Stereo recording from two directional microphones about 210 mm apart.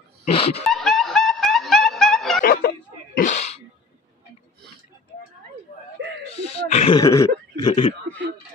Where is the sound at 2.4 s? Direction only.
45° left (ahead or behind).